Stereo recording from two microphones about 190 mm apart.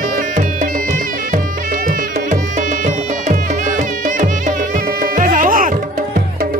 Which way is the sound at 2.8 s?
40° right (ahead or behind).